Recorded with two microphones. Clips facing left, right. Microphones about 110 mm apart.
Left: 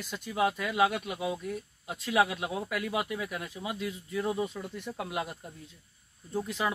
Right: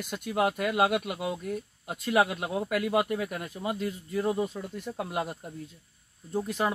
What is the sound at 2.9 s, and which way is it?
Speech, 50° right (ahead or behind).